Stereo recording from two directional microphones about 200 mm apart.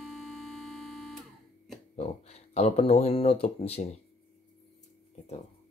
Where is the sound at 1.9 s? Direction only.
30° left (ahead or behind).